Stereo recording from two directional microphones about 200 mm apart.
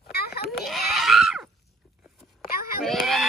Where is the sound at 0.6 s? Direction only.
Centre (ahead or behind).